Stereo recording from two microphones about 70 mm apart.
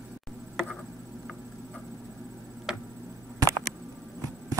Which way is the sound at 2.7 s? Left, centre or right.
Centre.